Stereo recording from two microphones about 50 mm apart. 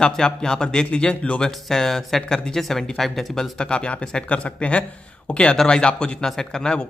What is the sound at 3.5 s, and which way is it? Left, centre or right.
A man's voice, centre.